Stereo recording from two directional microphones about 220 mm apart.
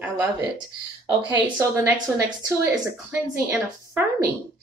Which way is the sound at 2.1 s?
10° right (ahead or behind).